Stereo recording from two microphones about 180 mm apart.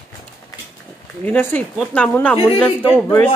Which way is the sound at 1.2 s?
10° left (ahead or behind).